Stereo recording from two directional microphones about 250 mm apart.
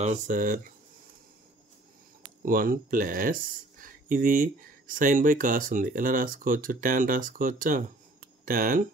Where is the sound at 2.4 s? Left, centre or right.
Right.